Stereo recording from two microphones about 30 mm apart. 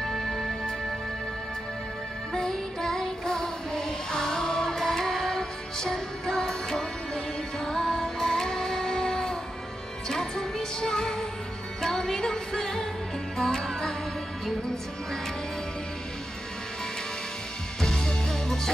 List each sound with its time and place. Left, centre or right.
0.0 s music: centre
2.3 s music: centre
17.7 s music: centre